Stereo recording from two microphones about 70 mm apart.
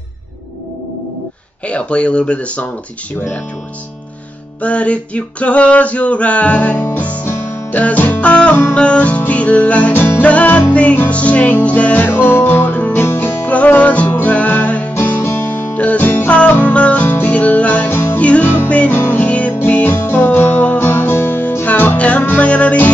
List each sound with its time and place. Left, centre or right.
1.7 s speech: centre
4.6 s male singing: centre
6.9 s music: left
9.9 s music: left
10.2 s male singing: left
10.7 s music: centre
17.9 s music: left
18.2 s music: centre